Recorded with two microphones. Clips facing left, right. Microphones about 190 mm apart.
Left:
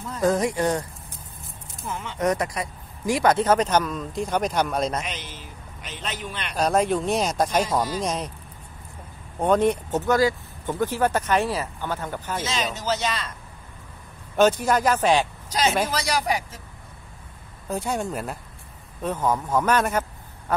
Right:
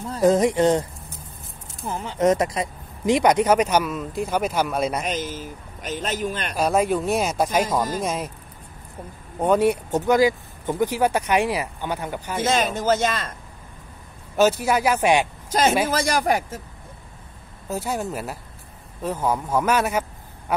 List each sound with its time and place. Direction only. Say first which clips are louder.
0.2 s speech: right 5 dB; 20° right (ahead or behind)
1.9 s speech: right 3 dB; 35° right (ahead or behind)
2.1 s speech: right 5 dB; 25° right (ahead or behind); by 5.0 s 5° right (ahead or behind)
5.0 s a man's voice: right 8 dB; 45° right (ahead or behind)
6.5 s speech: even; 5° right (ahead or behind)
9.4 s speech: right 1 dB; 10° right (ahead or behind)
12.4 s a man's voice: right 8 dB; 55° right (ahead or behind)
14.3 s speech: even; 5° right (ahead or behind)
15.5 s a man's voice: right 3 dB; 50° right (ahead or behind)
17.6 s a man's voice: even; 5° right (ahead or behind)